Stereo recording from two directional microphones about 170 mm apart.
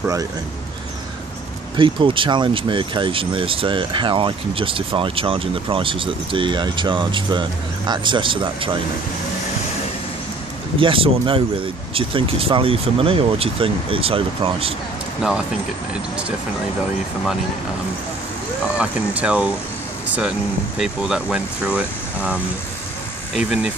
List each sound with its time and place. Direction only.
1.8 s speech: 30° right (ahead or behind)
10.8 s speech: 30° right (ahead or behind)
15.9 s speech: 5° right (ahead or behind)
18.8 s speech: 5° right (ahead or behind)